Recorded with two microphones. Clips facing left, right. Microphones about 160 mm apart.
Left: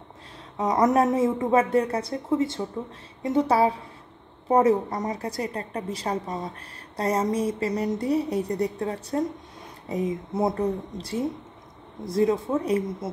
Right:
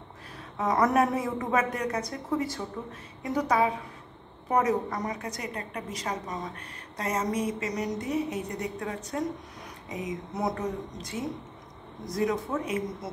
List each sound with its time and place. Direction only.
0.6 s a woman's voice: 20° left (ahead or behind)
10.3 s a woman's voice: 30° left (ahead or behind)